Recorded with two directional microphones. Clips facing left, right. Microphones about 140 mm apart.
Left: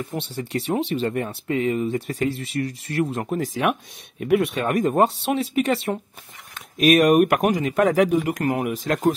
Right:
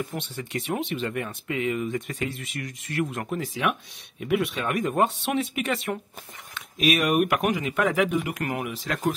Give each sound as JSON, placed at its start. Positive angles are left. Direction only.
{"t": 0.1, "sound": "speech", "side_deg": 35}
{"t": 6.5, "sound": "speech", "side_deg": 45}